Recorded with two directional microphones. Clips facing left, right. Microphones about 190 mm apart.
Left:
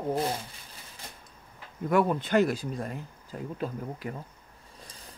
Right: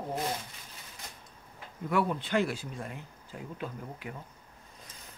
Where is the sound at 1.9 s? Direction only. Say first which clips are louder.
Left 5 dB; 45° left (ahead or behind).